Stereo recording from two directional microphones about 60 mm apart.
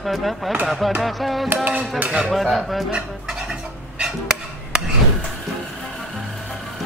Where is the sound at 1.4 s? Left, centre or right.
Right.